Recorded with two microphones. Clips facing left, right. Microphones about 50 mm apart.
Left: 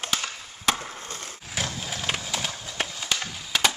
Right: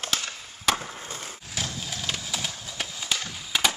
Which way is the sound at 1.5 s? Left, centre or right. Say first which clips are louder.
Left 3 dB; centre.